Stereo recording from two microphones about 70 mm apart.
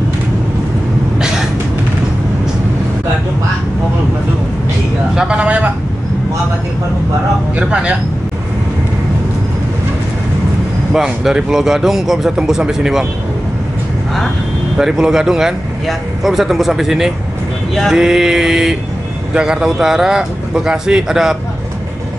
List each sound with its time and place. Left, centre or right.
5.1 s a sound: centre
7.5 s vehicle: centre
10.9 s speech: centre
14.8 s speech: centre